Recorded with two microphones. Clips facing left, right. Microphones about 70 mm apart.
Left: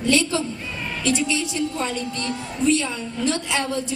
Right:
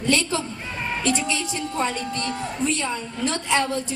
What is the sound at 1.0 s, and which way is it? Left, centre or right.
A woman's voice, right.